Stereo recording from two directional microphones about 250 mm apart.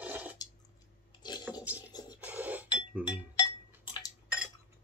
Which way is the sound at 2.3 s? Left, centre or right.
Centre.